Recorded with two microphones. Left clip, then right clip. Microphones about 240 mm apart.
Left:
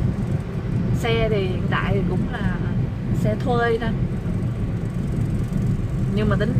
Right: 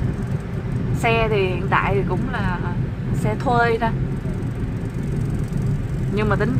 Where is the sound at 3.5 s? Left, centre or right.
Centre.